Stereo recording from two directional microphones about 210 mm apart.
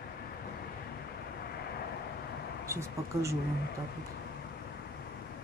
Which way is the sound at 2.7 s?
15° right (ahead or behind).